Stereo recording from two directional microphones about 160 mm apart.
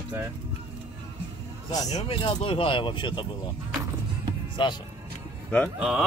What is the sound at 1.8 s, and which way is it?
Speech, 40° left (ahead or behind).